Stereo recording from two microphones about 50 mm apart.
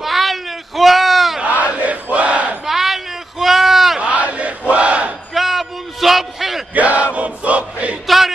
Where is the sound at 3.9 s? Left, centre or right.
Right.